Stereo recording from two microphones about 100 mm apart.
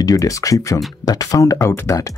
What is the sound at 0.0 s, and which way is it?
Speech, 35° left (ahead or behind).